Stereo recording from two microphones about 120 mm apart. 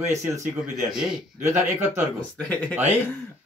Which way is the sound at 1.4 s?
20° right (ahead or behind).